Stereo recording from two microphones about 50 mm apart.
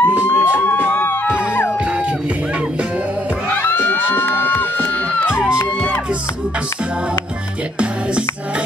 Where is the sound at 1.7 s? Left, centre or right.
Right.